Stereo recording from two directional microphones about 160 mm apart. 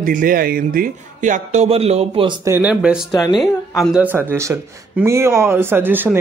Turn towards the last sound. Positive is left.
turn(degrees=-10)  # may be behind; listen again after turning